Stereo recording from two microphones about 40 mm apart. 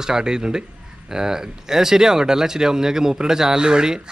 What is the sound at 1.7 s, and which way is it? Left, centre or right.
Speech, centre.